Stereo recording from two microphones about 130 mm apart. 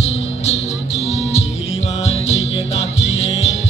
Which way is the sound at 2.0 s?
55° left (ahead or behind).